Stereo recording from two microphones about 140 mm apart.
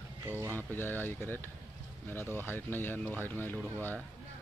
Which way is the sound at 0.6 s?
15° left (ahead or behind).